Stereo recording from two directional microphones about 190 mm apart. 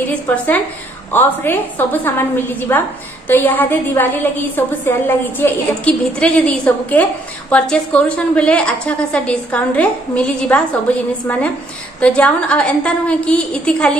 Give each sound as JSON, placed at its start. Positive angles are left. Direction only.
{"t": 0.0, "sound": "a woman's voice", "side_deg": 10}
{"t": 12.0, "sound": "a woman's voice", "side_deg": 5}